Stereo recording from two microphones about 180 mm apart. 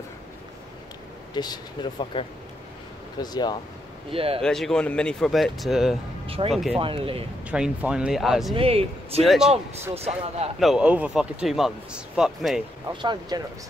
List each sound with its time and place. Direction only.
1.3 s speech: 25° left (ahead or behind)
4.1 s speech: 30° right (ahead or behind)
4.4 s speech: centre (ahead or behind)
6.2 s speech: 30° right (ahead or behind)
6.5 s speech: centre (ahead or behind)
6.8 s speech: 30° right (ahead or behind)
7.5 s speech: 5° right (ahead or behind)
8.5 s speech: 30° right (ahead or behind)
9.2 s speech: centre (ahead or behind)
9.5 s speech: 35° right (ahead or behind)
10.6 s speech: 5° right (ahead or behind)
12.9 s speech: 25° right (ahead or behind)